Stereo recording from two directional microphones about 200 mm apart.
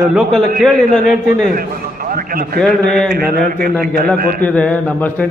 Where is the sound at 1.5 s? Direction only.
45° right (ahead or behind).